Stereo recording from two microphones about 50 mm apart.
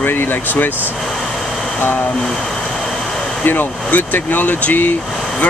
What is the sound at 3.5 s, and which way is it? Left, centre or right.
Speech, left.